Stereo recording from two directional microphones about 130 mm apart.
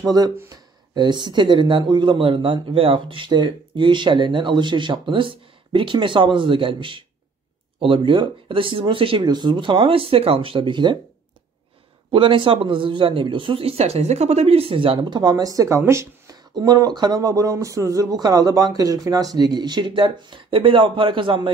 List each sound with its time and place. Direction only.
0.0 s speech: 30° right (ahead or behind)
12.1 s speech: 40° right (ahead or behind); by 16.3 s 20° right (ahead or behind)
16.5 s speech: 30° right (ahead or behind)